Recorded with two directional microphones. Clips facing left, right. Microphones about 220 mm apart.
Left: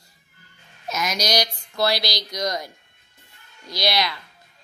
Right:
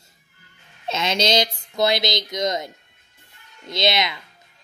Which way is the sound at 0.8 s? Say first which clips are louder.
Right 4 dB; 25° right (ahead or behind).